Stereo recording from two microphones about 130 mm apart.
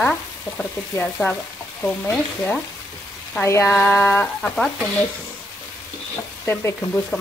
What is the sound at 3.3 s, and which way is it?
Speech, 20° left (ahead or behind).